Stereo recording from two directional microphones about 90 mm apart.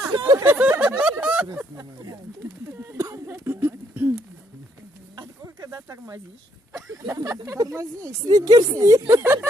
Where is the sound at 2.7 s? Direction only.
30° right (ahead or behind).